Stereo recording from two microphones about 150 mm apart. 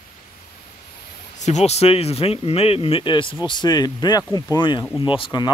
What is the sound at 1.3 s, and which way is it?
Speech, 50° left (ahead or behind).